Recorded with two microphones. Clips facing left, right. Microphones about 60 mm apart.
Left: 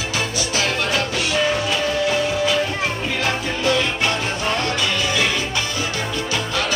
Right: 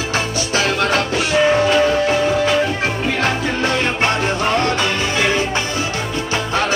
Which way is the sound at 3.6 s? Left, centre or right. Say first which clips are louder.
Right 1 dB; right.